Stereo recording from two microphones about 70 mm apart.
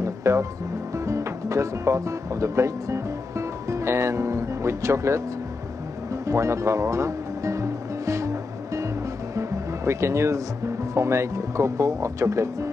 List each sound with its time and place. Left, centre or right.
0.0 s music: right
0.9 s speech: right
6.2 s music: right
11.0 s speech: right